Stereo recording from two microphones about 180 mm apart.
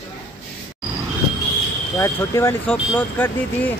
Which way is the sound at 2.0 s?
15° left (ahead or behind).